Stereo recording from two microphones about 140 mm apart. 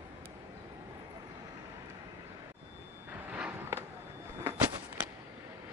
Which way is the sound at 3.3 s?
10° right (ahead or behind).